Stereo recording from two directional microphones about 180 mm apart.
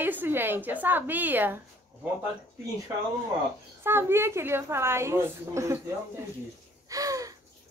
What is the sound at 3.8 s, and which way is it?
A woman's voice, 15° right (ahead or behind).